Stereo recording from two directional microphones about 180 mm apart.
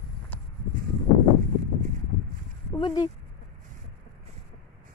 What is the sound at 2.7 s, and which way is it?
Speech, 25° left (ahead or behind).